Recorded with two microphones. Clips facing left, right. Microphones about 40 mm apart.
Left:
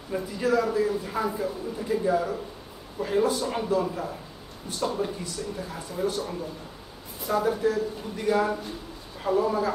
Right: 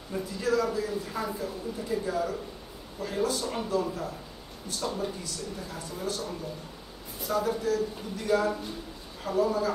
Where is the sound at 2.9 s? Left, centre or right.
Left.